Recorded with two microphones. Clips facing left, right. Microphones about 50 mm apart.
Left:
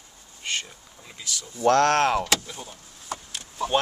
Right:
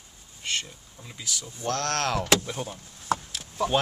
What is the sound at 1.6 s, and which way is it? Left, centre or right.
Speech, left.